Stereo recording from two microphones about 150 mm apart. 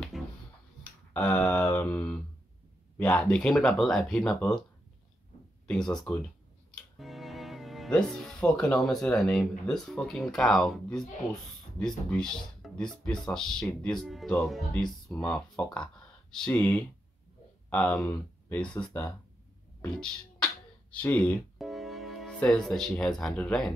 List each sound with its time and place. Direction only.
0.1 s music: centre (ahead or behind)
1.1 s a sound: 10° left (ahead or behind)
3.0 s speech: 10° left (ahead or behind)
5.7 s speech: 5° left (ahead or behind)
12.1 s speech: 5° left (ahead or behind)
19.8 s a sound: 5° left (ahead or behind)
20.9 s speech: 10° left (ahead or behind)
21.5 s speech: centre (ahead or behind)